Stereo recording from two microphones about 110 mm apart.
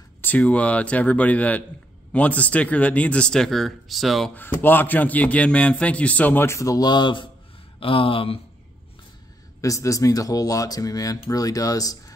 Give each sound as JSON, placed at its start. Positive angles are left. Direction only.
{"t": 0.2, "sound": "a man's voice", "side_deg": 15}
{"t": 4.3, "sound": "a man's voice", "side_deg": 15}
{"t": 7.8, "sound": "speech", "side_deg": 55}
{"t": 9.6, "sound": "speech", "side_deg": 30}